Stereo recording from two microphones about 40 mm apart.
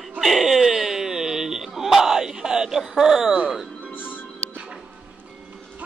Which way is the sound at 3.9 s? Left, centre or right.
Left.